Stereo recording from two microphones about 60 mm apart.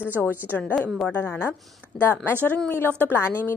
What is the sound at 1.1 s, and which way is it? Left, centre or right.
A woman's voice, left.